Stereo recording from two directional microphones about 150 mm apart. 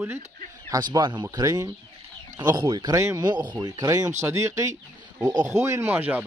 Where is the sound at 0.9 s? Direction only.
30° right (ahead or behind).